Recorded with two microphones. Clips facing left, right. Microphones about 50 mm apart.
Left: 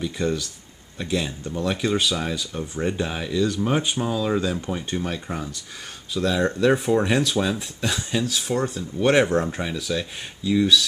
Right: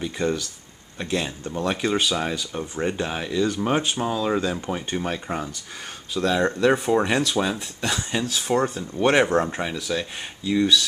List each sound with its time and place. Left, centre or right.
0.0 s speech: centre
8.1 s speech: centre
9.0 s speech: centre